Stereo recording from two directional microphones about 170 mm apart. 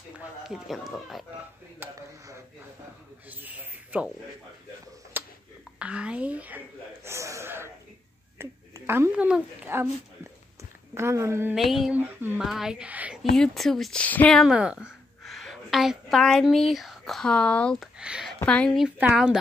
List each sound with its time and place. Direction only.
0.2 s speech: centre (ahead or behind)
1.8 s a sound: 15° right (ahead or behind)
5.1 s a sound: 10° right (ahead or behind)
5.8 s speech: 5° right (ahead or behind)
7.1 s a sound: 15° right (ahead or behind)
11.0 s speech: 15° right (ahead or behind)
11.5 s speech: centre (ahead or behind)
18.4 s a woman's voice: 5° left (ahead or behind)
18.9 s speech: 5° right (ahead or behind)